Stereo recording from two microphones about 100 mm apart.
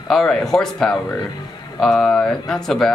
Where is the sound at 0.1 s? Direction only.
5° left (ahead or behind).